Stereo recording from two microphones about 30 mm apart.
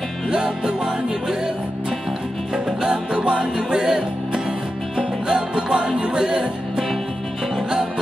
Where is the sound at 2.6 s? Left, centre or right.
Right.